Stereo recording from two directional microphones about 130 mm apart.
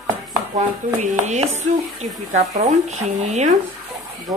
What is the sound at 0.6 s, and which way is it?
Speech, 65° right (ahead or behind).